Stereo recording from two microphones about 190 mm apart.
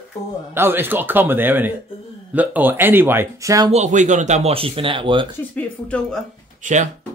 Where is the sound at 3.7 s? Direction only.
40° right (ahead or behind).